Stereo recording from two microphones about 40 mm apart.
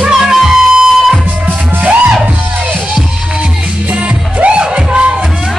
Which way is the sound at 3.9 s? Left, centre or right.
Right.